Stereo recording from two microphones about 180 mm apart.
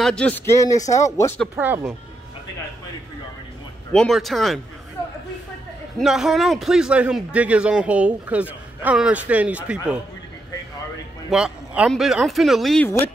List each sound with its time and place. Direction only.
0.0 s speech: 5° left (ahead or behind)
1.6 s a man's voice: 10° right (ahead or behind)
3.9 s speech: centre (ahead or behind)
5.9 s a man's voice: centre (ahead or behind)
11.2 s speech: 5° right (ahead or behind)